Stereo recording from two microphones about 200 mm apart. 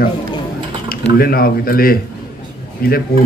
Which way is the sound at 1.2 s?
50° left (ahead or behind).